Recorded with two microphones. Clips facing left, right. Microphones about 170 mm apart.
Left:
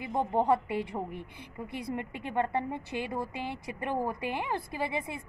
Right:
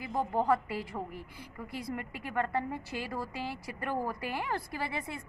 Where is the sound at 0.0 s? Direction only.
20° left (ahead or behind).